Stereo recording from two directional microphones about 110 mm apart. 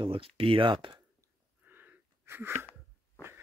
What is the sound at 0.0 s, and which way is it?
Speech, 55° right (ahead or behind).